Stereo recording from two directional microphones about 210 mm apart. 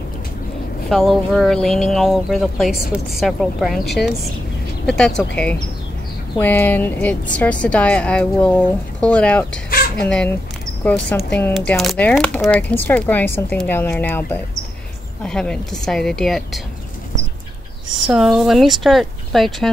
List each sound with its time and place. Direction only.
0.8 s speech: centre (ahead or behind)
4.8 s speech: 5° left (ahead or behind)
6.3 s speech: 10° left (ahead or behind)
9.7 s crow: 45° left (ahead or behind)
10.0 s speech: 5° left (ahead or behind)
17.9 s speech: centre (ahead or behind)